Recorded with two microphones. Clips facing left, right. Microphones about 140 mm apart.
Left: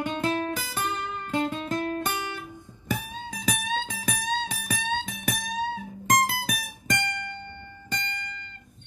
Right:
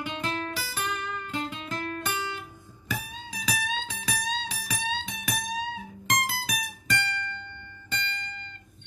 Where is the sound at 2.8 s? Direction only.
50° left (ahead or behind).